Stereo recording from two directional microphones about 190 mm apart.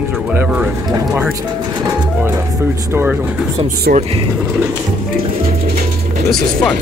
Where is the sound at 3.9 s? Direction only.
55° right (ahead or behind).